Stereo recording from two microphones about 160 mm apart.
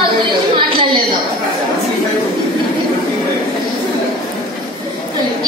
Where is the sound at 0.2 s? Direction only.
30° right (ahead or behind).